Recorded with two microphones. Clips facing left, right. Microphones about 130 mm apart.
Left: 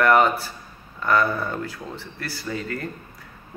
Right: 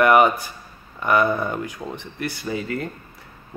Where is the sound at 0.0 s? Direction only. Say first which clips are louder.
Right 2 dB; 15° right (ahead or behind).